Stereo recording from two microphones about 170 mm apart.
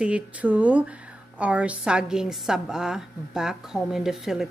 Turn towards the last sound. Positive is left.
turn(degrees=0)  # may be behind; listen again after turning